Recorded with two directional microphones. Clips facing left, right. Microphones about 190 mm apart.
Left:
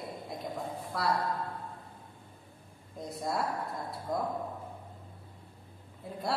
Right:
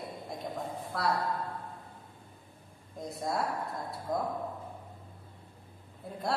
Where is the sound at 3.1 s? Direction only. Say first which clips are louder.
Even; centre (ahead or behind).